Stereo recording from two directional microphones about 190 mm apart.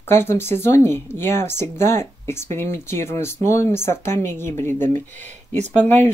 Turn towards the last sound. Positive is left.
turn(degrees=-35)  # may be behind; listen again after turning